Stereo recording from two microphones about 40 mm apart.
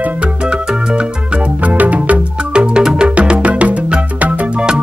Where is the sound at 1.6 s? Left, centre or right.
Right.